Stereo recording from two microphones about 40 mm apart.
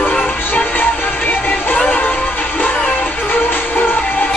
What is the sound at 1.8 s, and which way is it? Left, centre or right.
Music, left.